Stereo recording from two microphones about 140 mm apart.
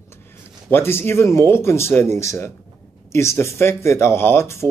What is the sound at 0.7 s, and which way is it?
Speech, 15° left (ahead or behind).